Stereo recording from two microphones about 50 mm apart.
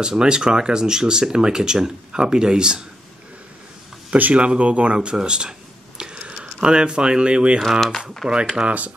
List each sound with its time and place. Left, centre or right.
0.0 s speech: centre
4.2 s speech: right
8.2 s speech: centre
8.5 s speech: right